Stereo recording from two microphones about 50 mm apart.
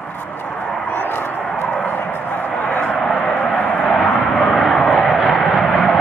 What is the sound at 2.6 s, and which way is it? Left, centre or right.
Vehicle, left.